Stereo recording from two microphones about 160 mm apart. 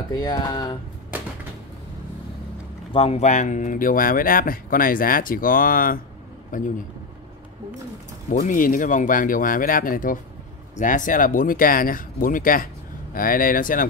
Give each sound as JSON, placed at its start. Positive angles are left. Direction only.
{"t": 0.1, "sound": "speech", "side_deg": 25}
{"t": 2.9, "sound": "speech", "side_deg": 40}
{"t": 8.3, "sound": "speech", "side_deg": 55}